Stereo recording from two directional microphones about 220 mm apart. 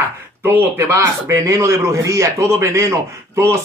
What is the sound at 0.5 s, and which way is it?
A man's voice, 10° right (ahead or behind).